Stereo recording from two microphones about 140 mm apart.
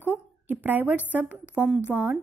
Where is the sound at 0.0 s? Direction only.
15° right (ahead or behind).